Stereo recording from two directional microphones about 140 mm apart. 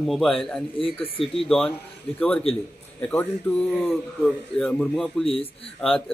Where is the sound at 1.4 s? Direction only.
5° left (ahead or behind).